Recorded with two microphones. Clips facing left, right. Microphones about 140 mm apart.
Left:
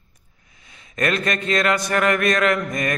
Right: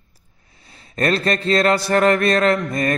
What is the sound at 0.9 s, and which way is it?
Mantra, 35° right (ahead or behind).